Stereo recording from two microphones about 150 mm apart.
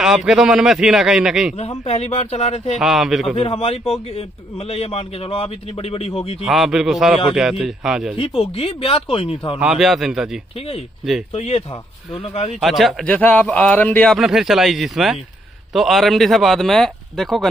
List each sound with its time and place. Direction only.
0.0 s a man's voice: 5° right (ahead or behind)
1.6 s a man's voice: 45° left (ahead or behind)
2.8 s a man's voice: centre (ahead or behind)
3.3 s a man's voice: 40° left (ahead or behind)
6.4 s a man's voice: centre (ahead or behind)
8.2 s a man's voice: 40° left (ahead or behind)
9.6 s a man's voice: 5° right (ahead or behind)
11.3 s a man's voice: 45° left (ahead or behind)
12.5 s a man's voice: centre (ahead or behind)